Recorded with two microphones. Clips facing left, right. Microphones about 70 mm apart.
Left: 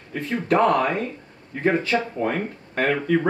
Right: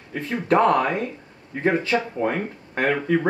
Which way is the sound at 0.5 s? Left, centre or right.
Right.